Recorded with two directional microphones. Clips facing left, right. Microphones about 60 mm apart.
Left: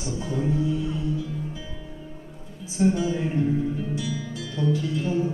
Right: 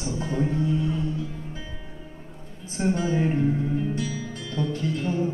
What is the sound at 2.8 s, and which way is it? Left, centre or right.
Music, right.